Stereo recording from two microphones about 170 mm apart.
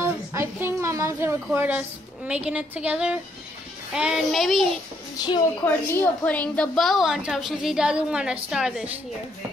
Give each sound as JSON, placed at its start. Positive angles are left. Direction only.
{"t": 0.0, "sound": "a woman's voice", "side_deg": -15}
{"t": 5.7, "sound": "a woman's voice", "side_deg": 10}